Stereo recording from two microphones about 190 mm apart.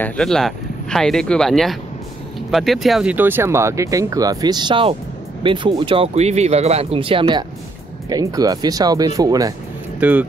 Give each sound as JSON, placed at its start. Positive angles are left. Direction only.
{"t": 0.0, "sound": "speech", "side_deg": 0}
{"t": 9.9, "sound": "speech", "side_deg": -5}